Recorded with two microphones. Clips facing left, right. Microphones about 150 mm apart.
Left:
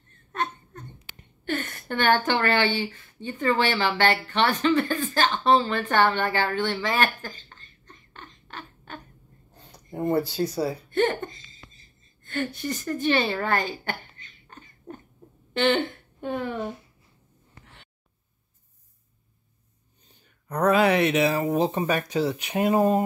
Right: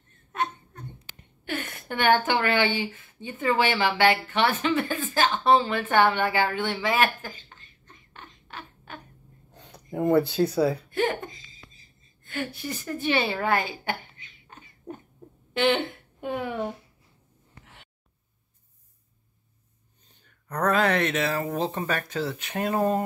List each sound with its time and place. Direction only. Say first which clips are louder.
1.4 s a woman's voice: left 3 dB; 5° right (ahead or behind)
9.6 s a sound: right 2 dB; 70° right (ahead or behind)
10.3 s speech: right 4 dB; 55° right (ahead or behind)
10.9 s a sound: left 3 dB; centre (ahead or behind)
15.5 s a woman's voice: left 1 dB; centre (ahead or behind)
20.2 s speech: left 3 dB; 10° left (ahead or behind)